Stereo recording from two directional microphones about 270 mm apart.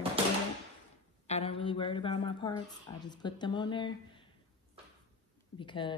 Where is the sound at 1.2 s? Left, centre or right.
Left.